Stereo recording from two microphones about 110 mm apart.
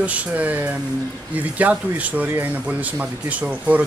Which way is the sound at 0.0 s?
15° right (ahead or behind).